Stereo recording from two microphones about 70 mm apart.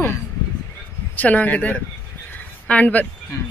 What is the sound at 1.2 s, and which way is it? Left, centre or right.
Speech, left.